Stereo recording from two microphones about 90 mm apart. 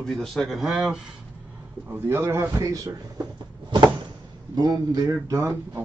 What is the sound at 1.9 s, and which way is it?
Speech, 25° right (ahead or behind).